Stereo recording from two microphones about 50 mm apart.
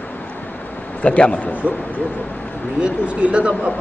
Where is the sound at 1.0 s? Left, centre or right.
Left.